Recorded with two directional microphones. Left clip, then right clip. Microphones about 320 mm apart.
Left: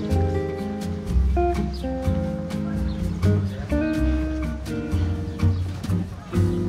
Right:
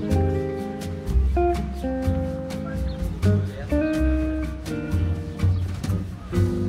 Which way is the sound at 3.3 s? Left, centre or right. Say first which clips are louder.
Right 1 dB; centre.